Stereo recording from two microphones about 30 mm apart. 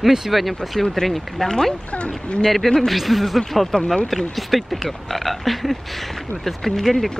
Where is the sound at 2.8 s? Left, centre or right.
Centre.